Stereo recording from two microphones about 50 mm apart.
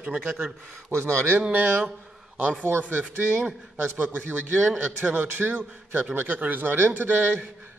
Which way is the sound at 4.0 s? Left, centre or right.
Right.